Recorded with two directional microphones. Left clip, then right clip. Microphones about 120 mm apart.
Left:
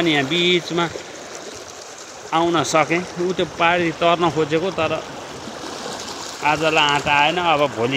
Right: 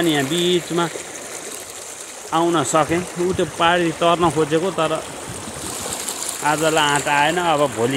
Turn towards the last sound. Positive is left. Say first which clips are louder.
# even
turn(degrees=-35)  # may be behind; listen again after turning